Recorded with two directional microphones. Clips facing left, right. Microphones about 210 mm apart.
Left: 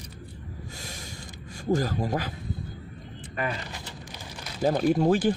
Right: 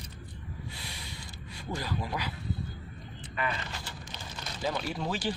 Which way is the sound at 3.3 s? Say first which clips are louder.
Left 3 dB; 45° left (ahead or behind).